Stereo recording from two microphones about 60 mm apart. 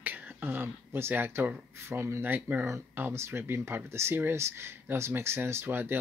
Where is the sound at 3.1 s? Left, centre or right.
Right.